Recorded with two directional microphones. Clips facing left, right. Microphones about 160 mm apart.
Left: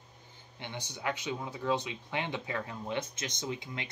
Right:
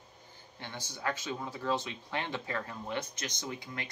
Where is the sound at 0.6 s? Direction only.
20° left (ahead or behind).